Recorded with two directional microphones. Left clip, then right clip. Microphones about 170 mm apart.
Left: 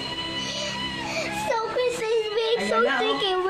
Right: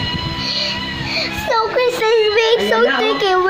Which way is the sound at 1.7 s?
35° right (ahead or behind).